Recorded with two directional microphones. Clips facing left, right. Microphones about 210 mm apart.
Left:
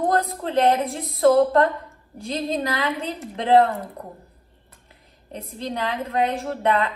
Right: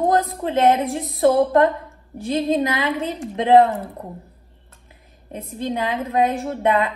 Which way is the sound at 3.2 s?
15° right (ahead or behind).